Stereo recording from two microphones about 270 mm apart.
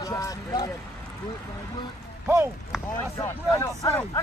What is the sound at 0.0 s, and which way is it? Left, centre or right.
Speech, centre.